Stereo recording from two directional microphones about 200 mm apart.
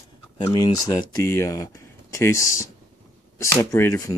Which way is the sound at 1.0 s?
15° left (ahead or behind).